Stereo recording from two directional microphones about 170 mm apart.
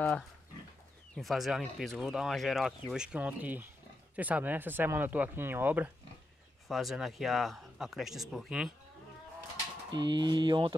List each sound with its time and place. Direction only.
1.1 s speech: centre (ahead or behind)
6.7 s speech: centre (ahead or behind)
9.9 s speech: 25° right (ahead or behind)